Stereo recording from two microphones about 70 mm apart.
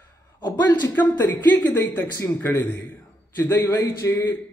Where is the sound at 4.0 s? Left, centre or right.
Left.